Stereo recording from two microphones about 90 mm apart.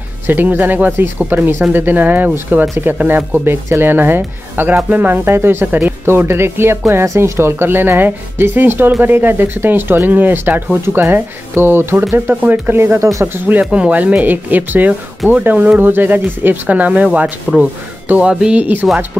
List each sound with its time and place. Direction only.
0.3 s speech: 20° right (ahead or behind)